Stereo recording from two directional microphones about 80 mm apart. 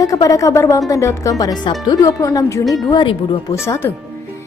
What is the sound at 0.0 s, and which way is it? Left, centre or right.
A woman's voice, left.